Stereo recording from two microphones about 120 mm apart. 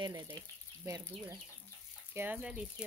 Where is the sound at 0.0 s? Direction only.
35° right (ahead or behind).